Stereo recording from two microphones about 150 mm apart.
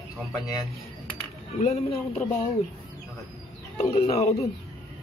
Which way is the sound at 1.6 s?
45° left (ahead or behind).